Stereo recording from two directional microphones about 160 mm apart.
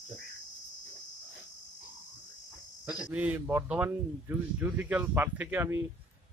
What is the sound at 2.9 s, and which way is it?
Speech, 10° right (ahead or behind).